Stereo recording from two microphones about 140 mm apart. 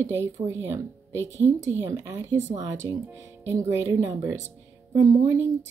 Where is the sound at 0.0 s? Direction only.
15° right (ahead or behind).